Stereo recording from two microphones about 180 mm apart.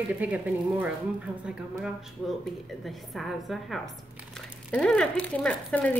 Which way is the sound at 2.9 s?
Centre (ahead or behind).